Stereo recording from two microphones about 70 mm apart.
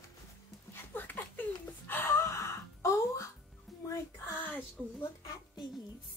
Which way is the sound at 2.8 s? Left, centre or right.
Left.